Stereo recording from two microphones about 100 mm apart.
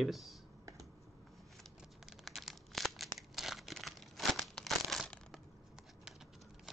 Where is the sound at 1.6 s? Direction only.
Centre (ahead or behind).